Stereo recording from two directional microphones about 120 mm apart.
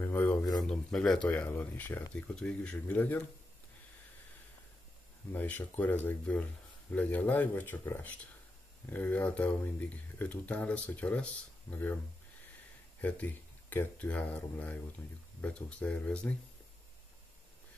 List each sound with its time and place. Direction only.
0.0 s a sound: 15° left (ahead or behind)
0.7 s speech: 5° left (ahead or behind)
5.3 s speech: 15° left (ahead or behind)
11.7 s speech: 20° left (ahead or behind)
13.0 s speech: 15° left (ahead or behind)